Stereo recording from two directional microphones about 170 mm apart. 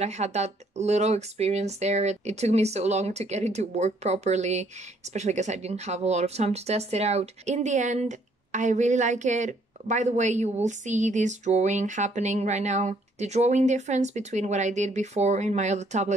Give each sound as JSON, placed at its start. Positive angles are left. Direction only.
{"t": 0.0, "sound": "speech", "side_deg": -40}